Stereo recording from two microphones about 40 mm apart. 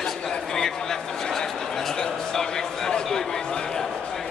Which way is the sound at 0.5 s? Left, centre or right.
Centre.